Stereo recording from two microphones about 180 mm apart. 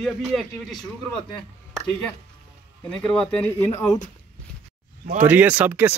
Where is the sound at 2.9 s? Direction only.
5° left (ahead or behind).